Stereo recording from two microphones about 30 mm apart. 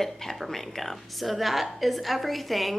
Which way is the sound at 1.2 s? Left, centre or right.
Centre.